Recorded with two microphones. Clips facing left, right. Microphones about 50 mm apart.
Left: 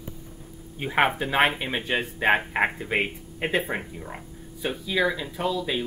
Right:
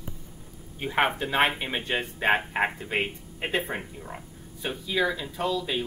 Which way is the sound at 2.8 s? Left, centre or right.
Centre.